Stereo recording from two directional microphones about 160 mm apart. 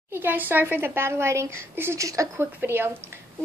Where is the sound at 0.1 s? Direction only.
10° right (ahead or behind).